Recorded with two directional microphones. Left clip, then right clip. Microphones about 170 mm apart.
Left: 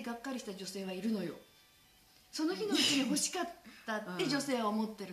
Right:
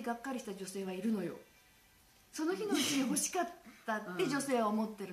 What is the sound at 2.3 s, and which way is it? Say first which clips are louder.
A woman's voice: left 1 dB; 20° right (ahead or behind).